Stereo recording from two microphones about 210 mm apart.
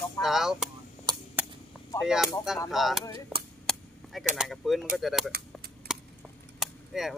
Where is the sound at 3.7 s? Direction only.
Centre (ahead or behind).